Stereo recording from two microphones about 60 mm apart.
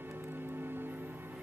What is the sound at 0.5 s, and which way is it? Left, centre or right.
Music, right.